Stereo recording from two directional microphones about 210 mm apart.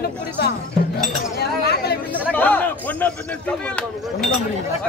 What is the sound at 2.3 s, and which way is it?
A man's voice, 5° left (ahead or behind).